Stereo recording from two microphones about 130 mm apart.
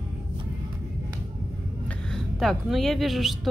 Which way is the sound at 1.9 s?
5° left (ahead or behind).